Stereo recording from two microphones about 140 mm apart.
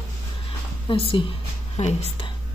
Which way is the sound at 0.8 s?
35° left (ahead or behind).